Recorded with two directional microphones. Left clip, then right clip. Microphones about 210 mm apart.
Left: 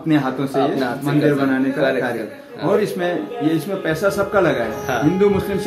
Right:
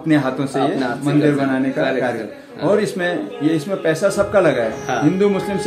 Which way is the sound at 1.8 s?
10° left (ahead or behind).